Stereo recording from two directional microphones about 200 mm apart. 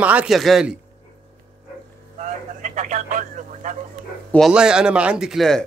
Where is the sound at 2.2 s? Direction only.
40° right (ahead or behind).